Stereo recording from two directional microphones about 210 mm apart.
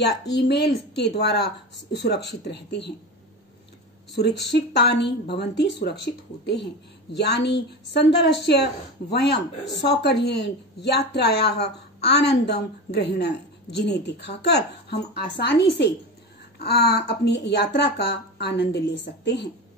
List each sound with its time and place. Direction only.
0.0 s speech: 50° left (ahead or behind)
4.2 s speech: 50° left (ahead or behind)